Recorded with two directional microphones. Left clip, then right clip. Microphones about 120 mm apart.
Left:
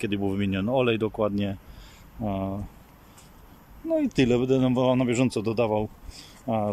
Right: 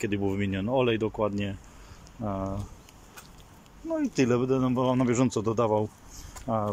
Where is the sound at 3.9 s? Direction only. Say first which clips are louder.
Left 3 dB; 30° left (ahead or behind).